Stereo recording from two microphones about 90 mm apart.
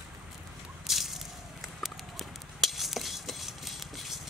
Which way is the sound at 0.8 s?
Centre (ahead or behind).